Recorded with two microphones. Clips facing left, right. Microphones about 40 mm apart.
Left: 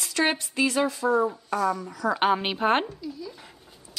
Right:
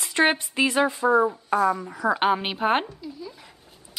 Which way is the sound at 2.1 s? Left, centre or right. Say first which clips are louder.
Left 2 dB; centre.